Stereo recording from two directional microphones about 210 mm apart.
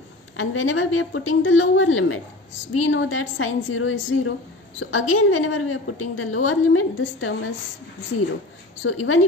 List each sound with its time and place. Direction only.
0.4 s a woman's voice: 80° left
8.8 s a woman's voice: 75° left (ahead or behind)